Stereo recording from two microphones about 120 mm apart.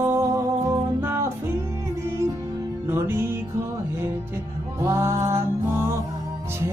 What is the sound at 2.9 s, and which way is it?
Music, 20° right (ahead or behind).